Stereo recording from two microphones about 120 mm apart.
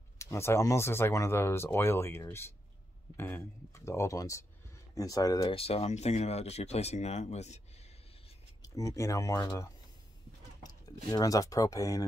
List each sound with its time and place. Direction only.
0.2 s speech: 25° left (ahead or behind)
5.5 s speech: 55° left (ahead or behind)
8.6 s speech: 25° left (ahead or behind)